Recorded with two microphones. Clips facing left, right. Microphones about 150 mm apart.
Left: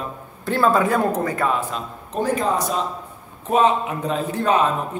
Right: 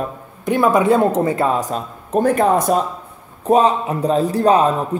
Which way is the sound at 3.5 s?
35° right (ahead or behind).